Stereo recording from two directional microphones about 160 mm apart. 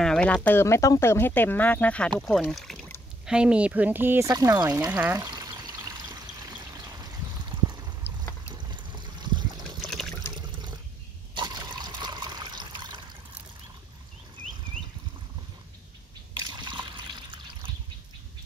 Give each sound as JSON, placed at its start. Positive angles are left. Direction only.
{"t": 0.0, "sound": "speech", "side_deg": 5}
{"t": 5.0, "sound": "water", "side_deg": -20}
{"t": 8.5, "sound": "trickle", "side_deg": -30}
{"t": 9.8, "sound": "water", "side_deg": 0}
{"t": 10.2, "sound": "water", "side_deg": -25}
{"t": 11.3, "sound": "trickle", "side_deg": -25}
{"t": 16.3, "sound": "liquid", "side_deg": -25}